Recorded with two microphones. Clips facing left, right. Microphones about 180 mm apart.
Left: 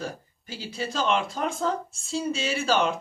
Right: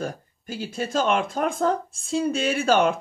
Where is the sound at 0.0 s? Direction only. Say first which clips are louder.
Right 4 dB; 50° right (ahead or behind).